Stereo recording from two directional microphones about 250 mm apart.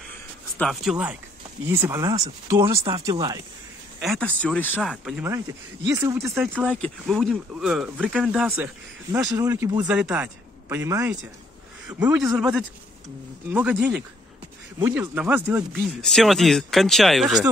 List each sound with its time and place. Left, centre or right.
0.6 s speech: centre
4.0 s speech: centre